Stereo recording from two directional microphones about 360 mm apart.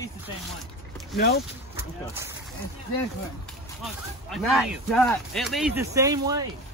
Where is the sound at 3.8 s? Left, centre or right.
Centre.